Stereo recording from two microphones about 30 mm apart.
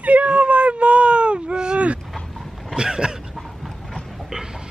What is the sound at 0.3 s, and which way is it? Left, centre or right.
Baby cry, right.